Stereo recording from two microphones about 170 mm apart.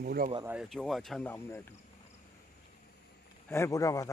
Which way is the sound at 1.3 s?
15° left (ahead or behind).